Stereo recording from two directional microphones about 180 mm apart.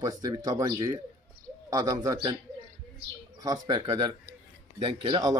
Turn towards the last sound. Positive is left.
turn(degrees=-25)  # may be behind; listen again after turning